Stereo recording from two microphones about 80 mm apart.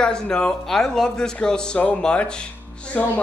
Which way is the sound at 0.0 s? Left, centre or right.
Centre.